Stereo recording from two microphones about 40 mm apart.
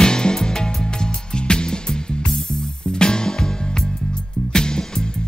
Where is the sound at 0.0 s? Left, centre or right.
Centre.